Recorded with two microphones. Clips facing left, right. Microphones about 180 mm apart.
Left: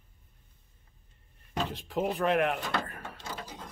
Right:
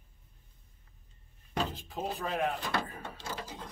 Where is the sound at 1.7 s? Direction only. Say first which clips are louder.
Left 6 dB; 75° left (ahead or behind).